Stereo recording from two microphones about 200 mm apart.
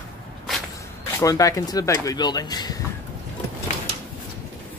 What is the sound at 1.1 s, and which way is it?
Speech, 15° left (ahead or behind).